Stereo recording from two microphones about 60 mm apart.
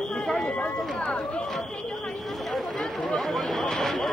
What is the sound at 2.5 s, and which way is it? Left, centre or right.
Chatter, centre.